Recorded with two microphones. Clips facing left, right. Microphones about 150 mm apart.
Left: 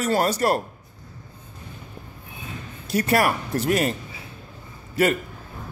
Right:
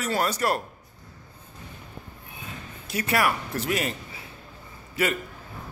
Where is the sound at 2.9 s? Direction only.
40° left (ahead or behind).